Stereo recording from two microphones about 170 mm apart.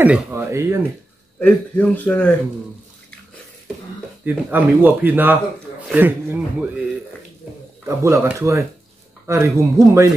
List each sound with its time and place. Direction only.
0.0 s speech: 10° right (ahead or behind)
1.4 s a man's voice: 10° left (ahead or behind)
4.2 s speech: 10° right (ahead or behind)
7.8 s speech: 15° right (ahead or behind)